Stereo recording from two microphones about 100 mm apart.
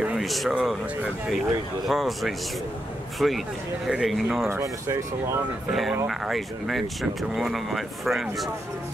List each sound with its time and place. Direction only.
0.0 s speech: 5° right (ahead or behind)
1.9 s speech: centre (ahead or behind)
4.5 s speech: 30° right (ahead or behind)
5.7 s speech: centre (ahead or behind)